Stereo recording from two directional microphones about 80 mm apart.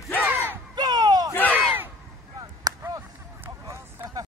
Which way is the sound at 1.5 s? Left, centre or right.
Right.